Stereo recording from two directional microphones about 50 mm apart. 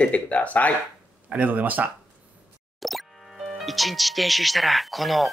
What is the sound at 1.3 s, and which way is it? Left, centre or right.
Speech, right.